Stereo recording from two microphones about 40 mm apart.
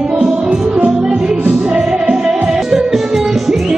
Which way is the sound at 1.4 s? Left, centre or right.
Right.